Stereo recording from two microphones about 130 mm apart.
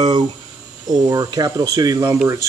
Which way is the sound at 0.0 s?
30° right (ahead or behind).